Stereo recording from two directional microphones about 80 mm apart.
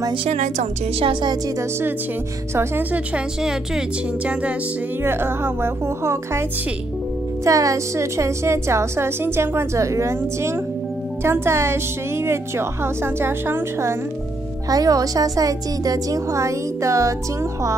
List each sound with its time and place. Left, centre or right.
5.0 s a woman's voice: right
7.4 s a woman's voice: right
14.7 s a woman's voice: right